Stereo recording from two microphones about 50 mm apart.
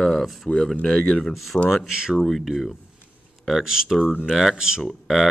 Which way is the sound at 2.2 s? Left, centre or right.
Centre.